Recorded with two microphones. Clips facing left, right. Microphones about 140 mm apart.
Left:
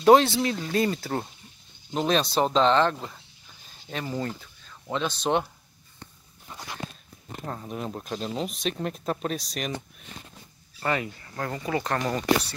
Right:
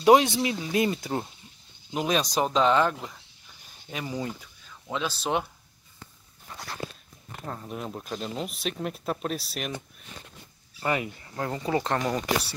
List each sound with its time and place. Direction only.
0.0 s speech: 10° right (ahead or behind)
7.4 s speech: centre (ahead or behind)
10.8 s speech: 15° right (ahead or behind)
12.0 s speech: 5° right (ahead or behind)